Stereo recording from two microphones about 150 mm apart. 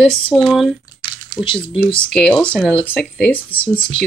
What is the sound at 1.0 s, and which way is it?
Typing, 35° left (ahead or behind).